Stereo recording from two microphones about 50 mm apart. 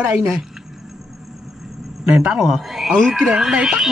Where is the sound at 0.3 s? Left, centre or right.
Centre.